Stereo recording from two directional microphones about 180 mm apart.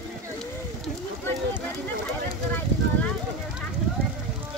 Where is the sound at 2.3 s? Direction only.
10° left (ahead or behind).